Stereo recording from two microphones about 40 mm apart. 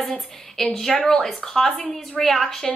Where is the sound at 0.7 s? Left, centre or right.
Centre.